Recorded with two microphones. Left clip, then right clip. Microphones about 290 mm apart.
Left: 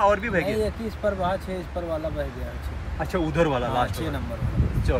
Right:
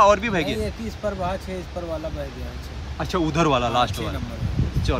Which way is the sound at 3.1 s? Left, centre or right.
Centre.